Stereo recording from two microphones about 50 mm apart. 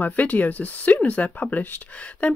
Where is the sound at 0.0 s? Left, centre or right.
Left.